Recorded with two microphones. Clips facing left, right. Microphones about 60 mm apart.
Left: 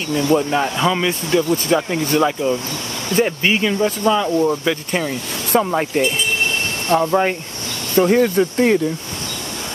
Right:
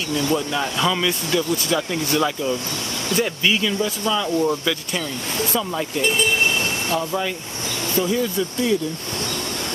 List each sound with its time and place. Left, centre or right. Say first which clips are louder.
0.1 s speech: left 6 dB; left
5.7 s speech: left 4 dB; left